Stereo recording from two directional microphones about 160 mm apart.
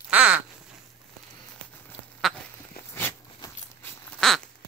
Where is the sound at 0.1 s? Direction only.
10° right (ahead or behind).